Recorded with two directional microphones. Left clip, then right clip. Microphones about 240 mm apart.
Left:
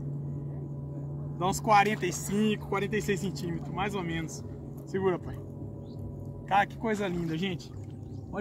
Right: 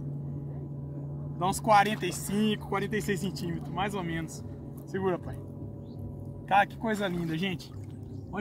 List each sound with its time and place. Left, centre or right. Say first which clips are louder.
1.4 s speech: even; centre
6.5 s speech: right 1 dB; centre